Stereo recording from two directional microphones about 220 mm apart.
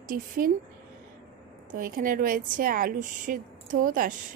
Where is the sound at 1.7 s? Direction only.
40° right (ahead or behind).